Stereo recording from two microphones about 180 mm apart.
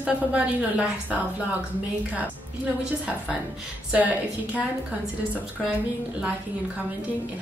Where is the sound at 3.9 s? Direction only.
10° right (ahead or behind).